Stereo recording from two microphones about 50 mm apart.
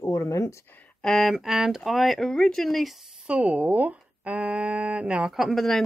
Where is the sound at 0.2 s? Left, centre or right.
Left.